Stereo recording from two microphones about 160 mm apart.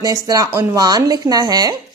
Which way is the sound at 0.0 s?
20° right (ahead or behind).